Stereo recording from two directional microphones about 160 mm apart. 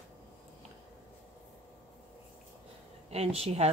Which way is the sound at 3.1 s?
40° right (ahead or behind).